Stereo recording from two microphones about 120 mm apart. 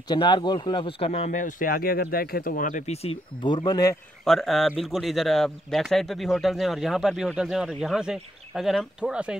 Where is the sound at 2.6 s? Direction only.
85° left; by 3.1 s 60° left (ahead or behind).